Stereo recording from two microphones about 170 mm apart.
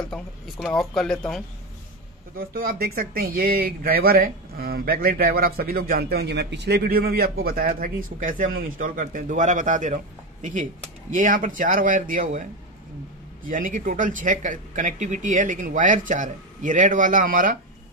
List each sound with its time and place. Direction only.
0.0 s speech: centre (ahead or behind)
2.3 s speech: 60° right (ahead or behind)